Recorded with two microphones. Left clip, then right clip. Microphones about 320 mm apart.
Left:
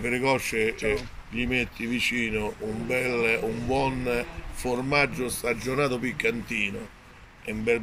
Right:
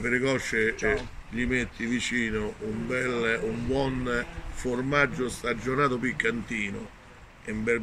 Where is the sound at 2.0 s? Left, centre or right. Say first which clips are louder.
Left 4 dB; left.